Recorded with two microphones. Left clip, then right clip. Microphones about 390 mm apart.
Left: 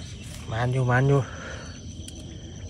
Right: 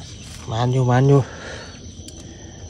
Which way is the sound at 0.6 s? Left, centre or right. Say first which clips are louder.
Right 5 dB; centre.